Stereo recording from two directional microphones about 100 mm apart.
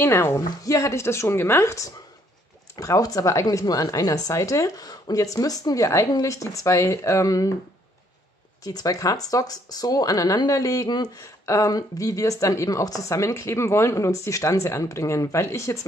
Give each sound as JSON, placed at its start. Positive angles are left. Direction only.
{"t": 0.0, "sound": "a woman's voice", "side_deg": 25}
{"t": 8.6, "sound": "a woman's voice", "side_deg": 35}